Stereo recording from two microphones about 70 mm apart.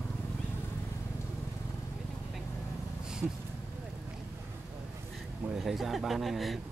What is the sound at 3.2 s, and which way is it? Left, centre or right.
Speech, centre.